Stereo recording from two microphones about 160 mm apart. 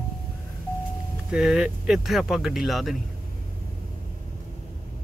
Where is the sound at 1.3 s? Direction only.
5° right (ahead or behind).